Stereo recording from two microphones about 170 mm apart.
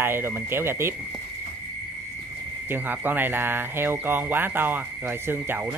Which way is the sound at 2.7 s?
10° right (ahead or behind).